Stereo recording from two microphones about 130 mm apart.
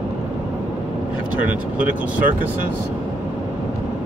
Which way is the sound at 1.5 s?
10° right (ahead or behind).